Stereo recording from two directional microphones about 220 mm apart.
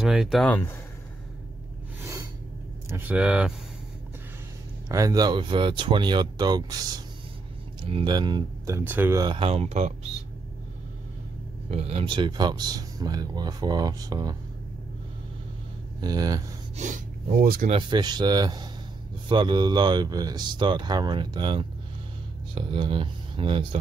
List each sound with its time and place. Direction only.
0.0 s speech: centre (ahead or behind)
2.9 s speech: 10° right (ahead or behind)
4.8 s speech: 15° right (ahead or behind)
11.7 s speech: 25° right (ahead or behind)
16.0 s speech: 15° right (ahead or behind)
16.7 s speech: 35° right (ahead or behind)
17.6 s speech: 25° right (ahead or behind)